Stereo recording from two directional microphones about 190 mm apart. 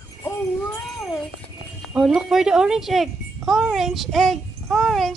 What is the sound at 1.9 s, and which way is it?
Speech, centre (ahead or behind).